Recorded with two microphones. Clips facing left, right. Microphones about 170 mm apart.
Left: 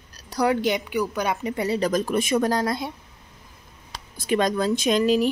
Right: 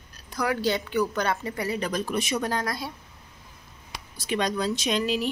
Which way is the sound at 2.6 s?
25° left (ahead or behind).